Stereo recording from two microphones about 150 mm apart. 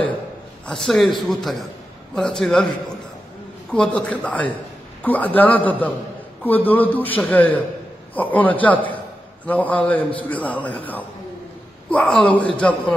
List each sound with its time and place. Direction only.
0.7 s a man's voice: 5° left (ahead or behind)
3.7 s a man's voice: 5° left (ahead or behind)